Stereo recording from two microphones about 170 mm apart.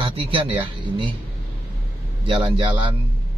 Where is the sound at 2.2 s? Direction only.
30° right (ahead or behind).